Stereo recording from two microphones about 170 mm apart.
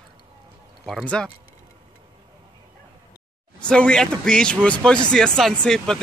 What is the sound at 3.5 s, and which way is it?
Speech, 5° left (ahead or behind).